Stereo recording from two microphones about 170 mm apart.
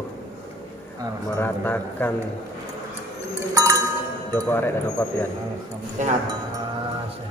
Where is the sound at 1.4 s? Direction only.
10° left (ahead or behind).